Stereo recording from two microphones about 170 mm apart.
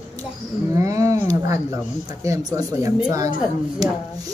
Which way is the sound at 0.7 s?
20° right (ahead or behind).